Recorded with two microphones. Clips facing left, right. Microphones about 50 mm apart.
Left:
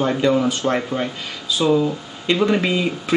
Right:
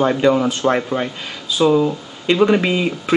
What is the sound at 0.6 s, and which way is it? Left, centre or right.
Speech, right.